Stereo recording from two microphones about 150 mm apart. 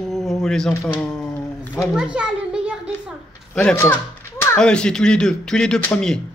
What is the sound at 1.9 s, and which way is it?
Children playing, 5° right (ahead or behind).